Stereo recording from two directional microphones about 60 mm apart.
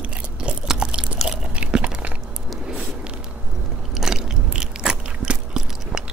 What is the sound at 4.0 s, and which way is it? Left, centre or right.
Biting, centre.